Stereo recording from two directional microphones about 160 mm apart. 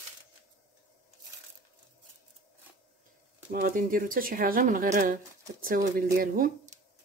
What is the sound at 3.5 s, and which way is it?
Speech, 60° right (ahead or behind).